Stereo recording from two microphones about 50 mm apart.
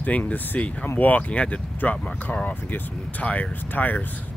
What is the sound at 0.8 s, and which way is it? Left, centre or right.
Speech, left.